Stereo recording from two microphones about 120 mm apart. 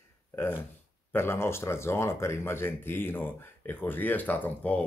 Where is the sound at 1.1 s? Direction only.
20° left (ahead or behind).